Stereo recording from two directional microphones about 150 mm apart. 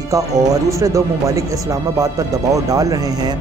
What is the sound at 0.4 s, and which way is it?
Speech, 20° right (ahead or behind).